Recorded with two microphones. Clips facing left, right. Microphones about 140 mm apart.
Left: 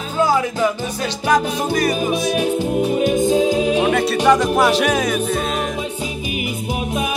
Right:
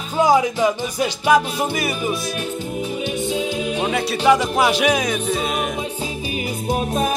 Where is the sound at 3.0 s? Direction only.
45° left (ahead or behind).